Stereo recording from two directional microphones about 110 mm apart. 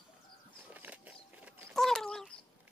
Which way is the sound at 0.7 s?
15° right (ahead or behind).